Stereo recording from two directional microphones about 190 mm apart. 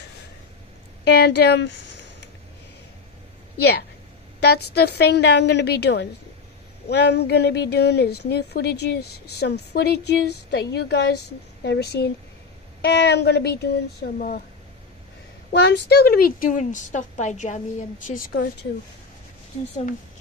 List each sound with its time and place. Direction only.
1.0 s speech: 60° left (ahead or behind)
4.4 s speech: 55° left (ahead or behind)
15.5 s a woman's voice: 60° left (ahead or behind); by 17.8 s 40° left (ahead or behind)
18.3 s a woman's voice: 55° left (ahead or behind)